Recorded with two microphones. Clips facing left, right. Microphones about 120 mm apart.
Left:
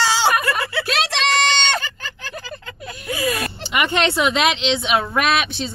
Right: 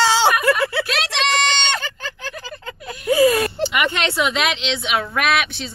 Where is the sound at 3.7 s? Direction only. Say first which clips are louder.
Left 2 dB; 25° left (ahead or behind).